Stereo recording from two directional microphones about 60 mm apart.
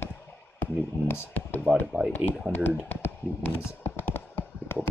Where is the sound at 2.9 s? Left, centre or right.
Left.